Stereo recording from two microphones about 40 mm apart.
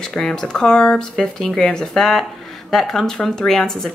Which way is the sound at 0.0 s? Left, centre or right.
Centre.